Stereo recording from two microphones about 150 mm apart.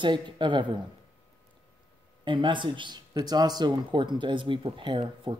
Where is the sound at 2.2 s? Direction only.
30° right (ahead or behind).